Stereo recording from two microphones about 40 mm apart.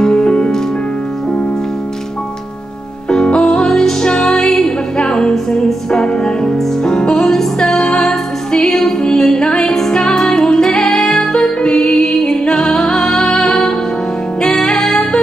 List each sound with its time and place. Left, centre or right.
0.0 s music: centre
3.1 s music: centre